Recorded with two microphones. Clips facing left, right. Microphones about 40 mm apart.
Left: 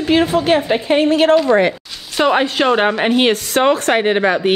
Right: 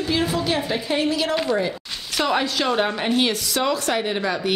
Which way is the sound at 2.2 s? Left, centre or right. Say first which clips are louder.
Left 7 dB; left.